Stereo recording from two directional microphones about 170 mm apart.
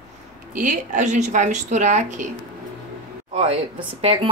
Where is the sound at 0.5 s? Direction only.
50° right (ahead or behind).